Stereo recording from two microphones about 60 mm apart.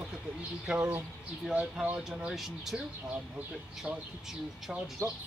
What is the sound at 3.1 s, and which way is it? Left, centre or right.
Speech, centre.